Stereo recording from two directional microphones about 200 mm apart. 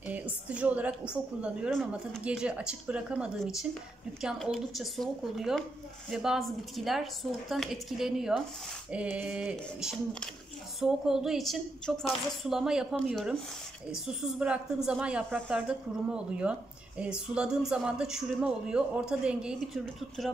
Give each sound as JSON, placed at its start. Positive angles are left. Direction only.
{"t": 0.0, "sound": "a woman's voice", "side_deg": -5}